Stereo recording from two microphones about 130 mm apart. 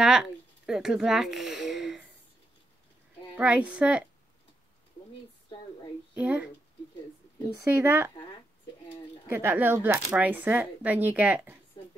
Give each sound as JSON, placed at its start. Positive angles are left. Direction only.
{"t": 0.0, "sound": "a sound", "side_deg": -5}
{"t": 3.3, "sound": "speech", "side_deg": -10}
{"t": 5.5, "sound": "a sound", "side_deg": 35}
{"t": 6.1, "sound": "speech", "side_deg": -10}
{"t": 7.8, "sound": "speech", "side_deg": -15}
{"t": 9.3, "sound": "speech", "side_deg": -15}
{"t": 11.7, "sound": "a woman's voice", "side_deg": 40}